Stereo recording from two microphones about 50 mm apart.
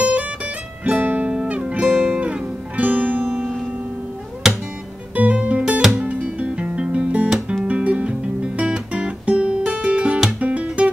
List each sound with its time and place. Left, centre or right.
0.0 s music: right
1.3 s music: centre
4.4 s music: centre
5.1 s music: right
5.7 s music: centre
5.9 s music: right